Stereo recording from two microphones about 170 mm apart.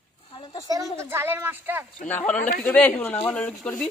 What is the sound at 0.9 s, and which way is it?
Speech, 15° right (ahead or behind).